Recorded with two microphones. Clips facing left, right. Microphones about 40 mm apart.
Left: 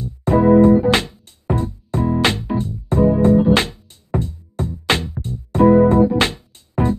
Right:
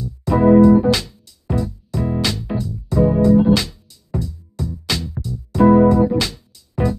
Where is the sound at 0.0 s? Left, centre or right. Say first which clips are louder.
Even; left.